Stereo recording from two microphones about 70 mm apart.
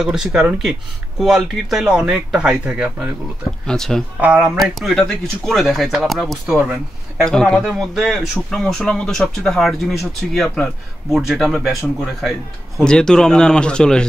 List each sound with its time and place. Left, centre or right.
0.0 s speech: centre
2.0 s speech: centre
3.6 s speech: centre
4.2 s speech: right
4.6 s speech: centre
7.6 s speech: centre
8.1 s speech: centre
11.1 s speech: centre